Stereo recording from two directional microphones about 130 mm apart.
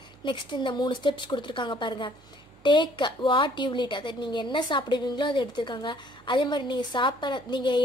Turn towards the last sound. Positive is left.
turn(degrees=35)  # may be behind; listen again after turning